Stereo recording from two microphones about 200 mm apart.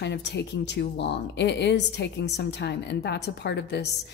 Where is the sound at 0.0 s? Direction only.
60° left (ahead or behind).